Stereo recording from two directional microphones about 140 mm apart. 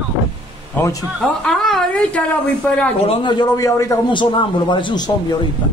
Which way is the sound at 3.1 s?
35° left (ahead or behind).